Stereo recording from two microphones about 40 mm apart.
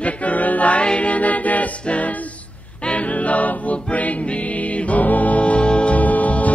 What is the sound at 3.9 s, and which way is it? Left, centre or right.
Music, left.